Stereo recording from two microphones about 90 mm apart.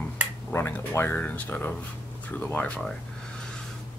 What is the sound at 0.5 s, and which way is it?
Speech, 25° left (ahead or behind).